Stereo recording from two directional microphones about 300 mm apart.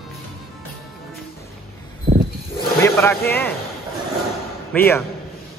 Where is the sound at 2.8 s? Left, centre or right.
Centre.